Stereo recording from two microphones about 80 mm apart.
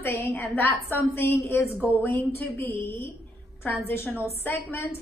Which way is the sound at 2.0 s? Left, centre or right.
Left.